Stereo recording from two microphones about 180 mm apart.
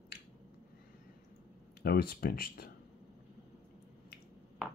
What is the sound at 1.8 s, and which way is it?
Speech, 60° left (ahead or behind).